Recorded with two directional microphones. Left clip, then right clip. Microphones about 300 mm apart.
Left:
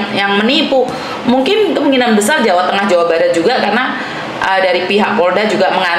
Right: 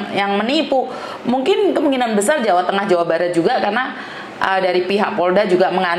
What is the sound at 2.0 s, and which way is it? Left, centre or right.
Speech, right.